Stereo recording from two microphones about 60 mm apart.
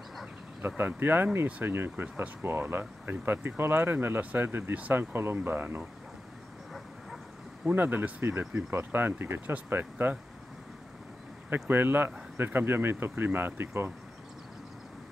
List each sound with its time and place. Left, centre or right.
0.6 s speech: right
4.5 s speech: right
4.7 s speech: right
5.1 s speech: right
7.7 s speech: right
11.7 s speech: right